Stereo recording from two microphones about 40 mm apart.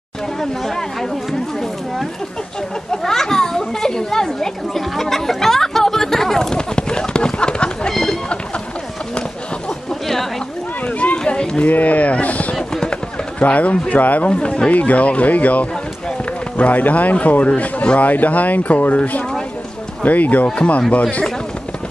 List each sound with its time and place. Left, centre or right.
2.9 s children playing: centre
7.9 s a sound: centre
11.0 s run: left
11.6 s speech: left
20.9 s speech: left